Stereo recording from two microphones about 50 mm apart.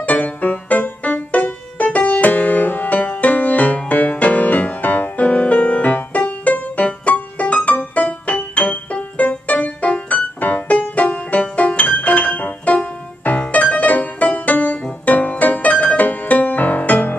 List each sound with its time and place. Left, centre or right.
0.0 s music: left